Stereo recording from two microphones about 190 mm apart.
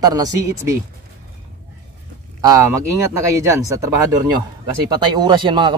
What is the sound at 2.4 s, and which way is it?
Speech, 20° right (ahead or behind).